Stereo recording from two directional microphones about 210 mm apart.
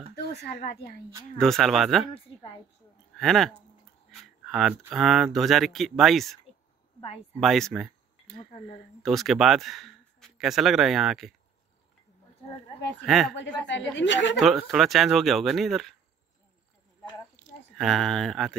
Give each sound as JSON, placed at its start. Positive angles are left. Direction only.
{"t": 0.1, "sound": "speech", "side_deg": 50}
{"t": 1.4, "sound": "speech", "side_deg": 0}
{"t": 3.2, "sound": "speech", "side_deg": 0}
{"t": 7.3, "sound": "speech", "side_deg": 0}
{"t": 13.0, "sound": "speech", "side_deg": 0}
{"t": 13.9, "sound": "speech", "side_deg": 60}
{"t": 14.3, "sound": "speech", "side_deg": 0}
{"t": 17.7, "sound": "speech", "side_deg": 0}